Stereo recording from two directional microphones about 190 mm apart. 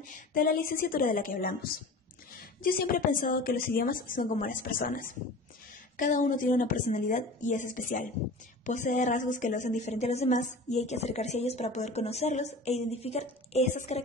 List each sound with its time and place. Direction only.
0.1 s a woman's voice: 50° left (ahead or behind)